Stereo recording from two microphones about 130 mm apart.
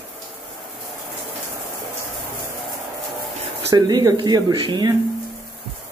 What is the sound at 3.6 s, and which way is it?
Speech, 30° right (ahead or behind).